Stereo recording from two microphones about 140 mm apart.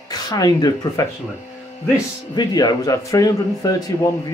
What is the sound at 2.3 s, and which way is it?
Speech, 30° left (ahead or behind).